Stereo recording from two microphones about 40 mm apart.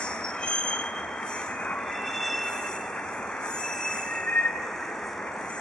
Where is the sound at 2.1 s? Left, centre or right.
Centre.